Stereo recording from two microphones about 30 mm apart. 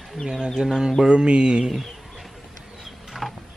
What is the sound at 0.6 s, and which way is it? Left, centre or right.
Chicken, centre.